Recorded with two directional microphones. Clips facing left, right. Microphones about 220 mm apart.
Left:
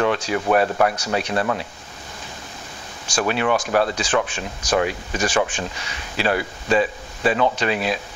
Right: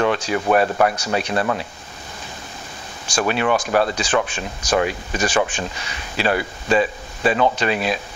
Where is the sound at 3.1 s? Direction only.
20° right (ahead or behind).